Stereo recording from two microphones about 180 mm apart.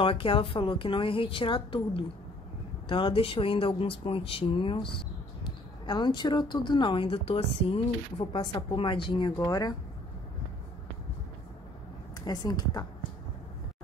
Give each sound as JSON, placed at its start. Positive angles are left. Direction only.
{"t": 0.0, "sound": "speech", "side_deg": 30}
{"t": 12.3, "sound": "speech", "side_deg": 20}